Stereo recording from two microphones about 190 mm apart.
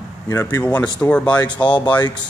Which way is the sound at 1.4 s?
25° left (ahead or behind).